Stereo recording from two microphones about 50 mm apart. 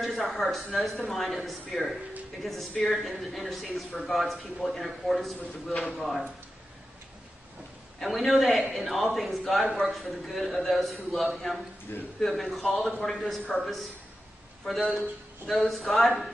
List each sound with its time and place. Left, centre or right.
0.0 s a man's voice: centre
8.0 s a man's voice: centre
11.9 s a man's voice: left
12.3 s a man's voice: centre